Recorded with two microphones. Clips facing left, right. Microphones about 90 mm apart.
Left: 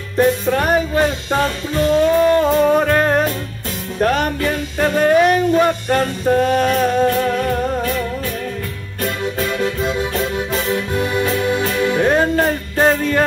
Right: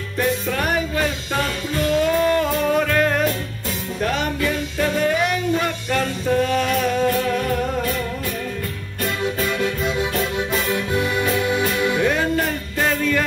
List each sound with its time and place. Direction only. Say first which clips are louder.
0.2 s music: left 6 dB; 35° left (ahead or behind)
4.0 s music: left 5 dB; 45° left (ahead or behind)
9.6 s music: left 3 dB; 35° left (ahead or behind)
11.0 s music: left 2 dB; 40° left (ahead or behind)